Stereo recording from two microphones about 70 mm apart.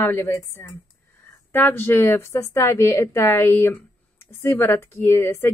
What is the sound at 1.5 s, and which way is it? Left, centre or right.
A woman's voice, left.